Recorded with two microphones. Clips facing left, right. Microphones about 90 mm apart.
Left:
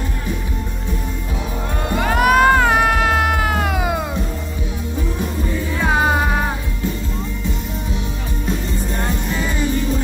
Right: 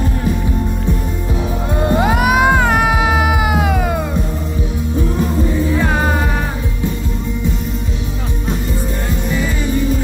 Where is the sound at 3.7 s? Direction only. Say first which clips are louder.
Right 3 dB; 5° left (ahead or behind).